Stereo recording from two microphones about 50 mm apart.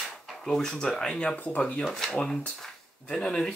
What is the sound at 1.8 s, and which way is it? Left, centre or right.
Speech, centre.